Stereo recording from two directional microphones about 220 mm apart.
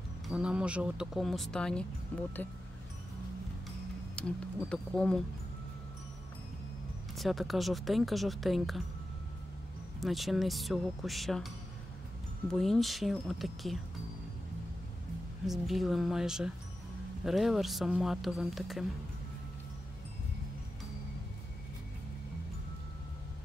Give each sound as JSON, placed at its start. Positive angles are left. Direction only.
{"t": 0.3, "sound": "speech", "side_deg": -5}
{"t": 4.1, "sound": "speech", "side_deg": 5}
{"t": 7.2, "sound": "speech", "side_deg": 0}
{"t": 9.9, "sound": "speech", "side_deg": 0}
{"t": 15.4, "sound": "speech", "side_deg": 0}